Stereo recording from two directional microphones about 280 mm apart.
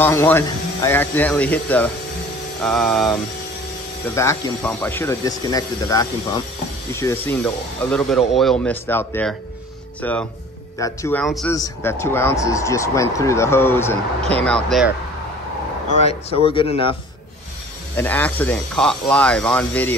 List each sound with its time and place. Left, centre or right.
0.0 s speech: centre
15.9 s speech: left
17.9 s speech: centre